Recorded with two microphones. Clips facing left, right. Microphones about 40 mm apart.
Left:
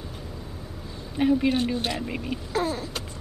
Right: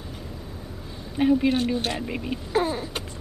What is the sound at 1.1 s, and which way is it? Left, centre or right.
Speech, centre.